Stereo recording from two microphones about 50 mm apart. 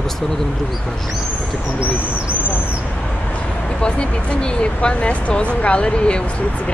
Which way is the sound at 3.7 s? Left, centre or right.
Left.